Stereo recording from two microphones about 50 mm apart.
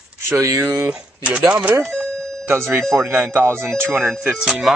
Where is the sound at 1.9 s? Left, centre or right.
Centre.